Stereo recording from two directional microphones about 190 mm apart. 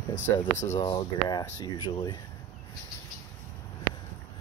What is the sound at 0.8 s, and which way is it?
Speech, 20° left (ahead or behind).